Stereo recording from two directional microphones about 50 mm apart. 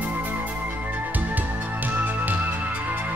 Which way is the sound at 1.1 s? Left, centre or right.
Right.